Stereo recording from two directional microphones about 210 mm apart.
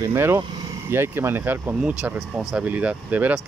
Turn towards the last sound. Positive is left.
turn(degrees=-5)  # may be behind; listen again after turning